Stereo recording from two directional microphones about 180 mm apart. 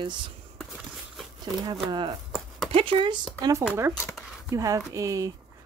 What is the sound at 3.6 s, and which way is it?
Speech, 10° right (ahead or behind).